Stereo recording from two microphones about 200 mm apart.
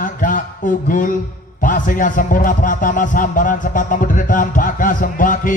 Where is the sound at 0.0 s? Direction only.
40° left (ahead or behind).